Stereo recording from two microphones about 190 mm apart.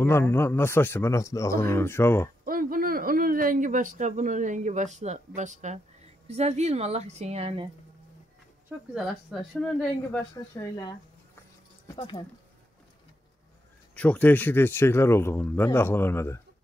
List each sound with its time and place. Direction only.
0.0 s speech: 10° left (ahead or behind)
2.4 s a man's voice: 50° right (ahead or behind); by 7.6 s 35° right (ahead or behind)
8.6 s a woman's voice: centre (ahead or behind)
10.3 s speech: 20° left (ahead or behind)
12.0 s speech: 25° left (ahead or behind)
13.9 s speech: 10° left (ahead or behind)